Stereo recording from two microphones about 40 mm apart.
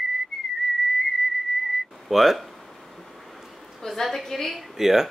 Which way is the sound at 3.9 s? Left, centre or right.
Centre.